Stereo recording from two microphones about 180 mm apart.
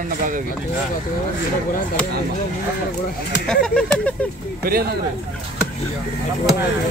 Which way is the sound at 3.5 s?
5° left (ahead or behind).